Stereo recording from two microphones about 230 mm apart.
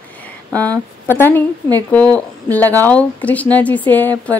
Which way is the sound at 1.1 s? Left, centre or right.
Centre.